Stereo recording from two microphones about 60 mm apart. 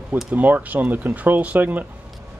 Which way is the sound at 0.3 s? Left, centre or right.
Right.